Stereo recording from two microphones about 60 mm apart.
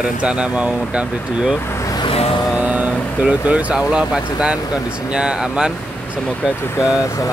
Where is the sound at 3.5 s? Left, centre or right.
Right.